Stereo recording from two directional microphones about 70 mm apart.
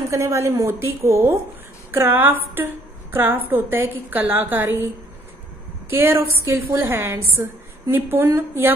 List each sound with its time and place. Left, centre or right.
0.1 s a woman's voice: right
5.9 s a woman's voice: right